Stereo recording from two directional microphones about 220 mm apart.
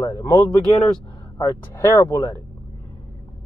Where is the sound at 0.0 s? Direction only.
15° left (ahead or behind).